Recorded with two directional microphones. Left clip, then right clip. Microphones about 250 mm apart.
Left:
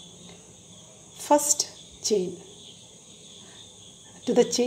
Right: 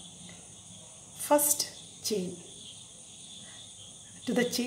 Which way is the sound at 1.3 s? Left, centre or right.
Centre.